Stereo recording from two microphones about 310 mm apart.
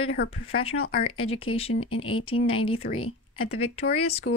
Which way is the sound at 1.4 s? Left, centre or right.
Centre.